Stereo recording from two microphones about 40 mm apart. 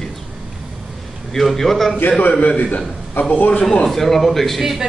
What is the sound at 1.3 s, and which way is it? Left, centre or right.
Speech, centre.